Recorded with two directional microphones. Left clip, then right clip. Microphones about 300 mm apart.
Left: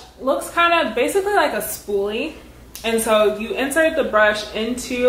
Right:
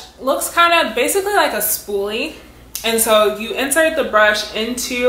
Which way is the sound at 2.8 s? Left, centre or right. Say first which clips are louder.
Right 3 dB; centre.